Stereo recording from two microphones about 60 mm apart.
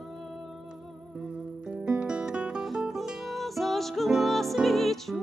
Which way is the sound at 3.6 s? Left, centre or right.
Centre.